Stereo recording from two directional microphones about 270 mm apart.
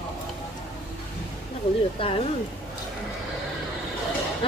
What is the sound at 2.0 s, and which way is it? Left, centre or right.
Speech, centre.